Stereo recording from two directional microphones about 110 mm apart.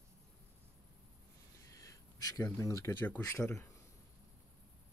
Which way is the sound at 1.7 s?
30° left (ahead or behind).